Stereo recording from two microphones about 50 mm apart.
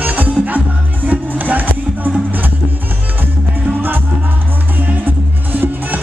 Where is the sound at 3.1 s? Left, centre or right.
Right.